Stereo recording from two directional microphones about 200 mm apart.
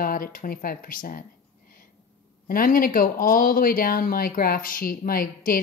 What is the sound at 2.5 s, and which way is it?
Speech, 45° left (ahead or behind).